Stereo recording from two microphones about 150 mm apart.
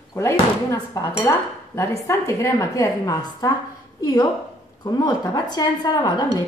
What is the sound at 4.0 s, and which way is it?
Speech, 25° left (ahead or behind).